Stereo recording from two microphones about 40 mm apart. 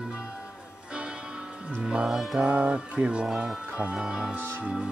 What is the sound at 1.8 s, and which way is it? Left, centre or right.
Music, centre.